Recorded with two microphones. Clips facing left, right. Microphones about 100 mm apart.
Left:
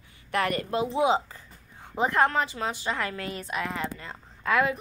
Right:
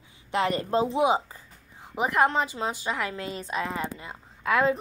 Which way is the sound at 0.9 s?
15° right (ahead or behind).